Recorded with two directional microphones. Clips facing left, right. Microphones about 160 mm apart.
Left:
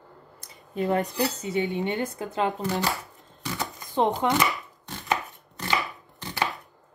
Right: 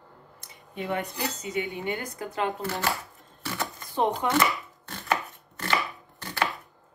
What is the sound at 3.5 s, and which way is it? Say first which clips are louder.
Chopping: left 3 dB; 20° left (ahead or behind).